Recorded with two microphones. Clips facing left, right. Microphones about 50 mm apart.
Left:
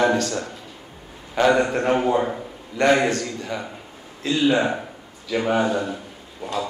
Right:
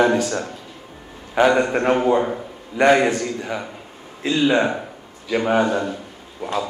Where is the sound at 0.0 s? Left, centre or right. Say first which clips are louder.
Right 2 dB; centre.